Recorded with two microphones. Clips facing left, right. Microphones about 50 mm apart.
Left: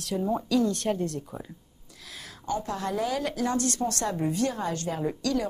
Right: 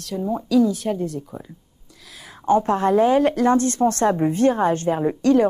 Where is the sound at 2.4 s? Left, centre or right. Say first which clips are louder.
Right 12 dB; right.